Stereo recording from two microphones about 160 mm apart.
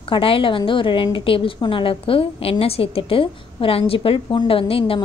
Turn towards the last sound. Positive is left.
turn(degrees=35)  # may be behind; listen again after turning